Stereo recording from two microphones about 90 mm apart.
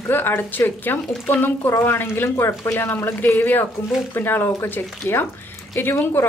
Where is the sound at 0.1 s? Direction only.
25° left (ahead or behind).